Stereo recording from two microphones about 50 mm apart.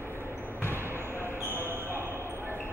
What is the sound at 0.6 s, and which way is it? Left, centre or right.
Basketball bounce, left.